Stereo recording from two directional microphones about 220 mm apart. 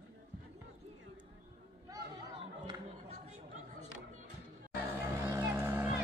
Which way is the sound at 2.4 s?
20° right (ahead or behind).